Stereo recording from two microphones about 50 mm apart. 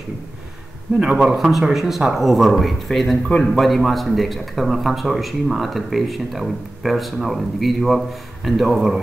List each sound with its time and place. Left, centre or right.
1.0 s a man's voice: centre
1.3 s speech: centre